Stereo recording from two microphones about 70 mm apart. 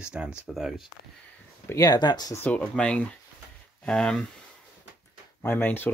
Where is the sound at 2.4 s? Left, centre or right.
Centre.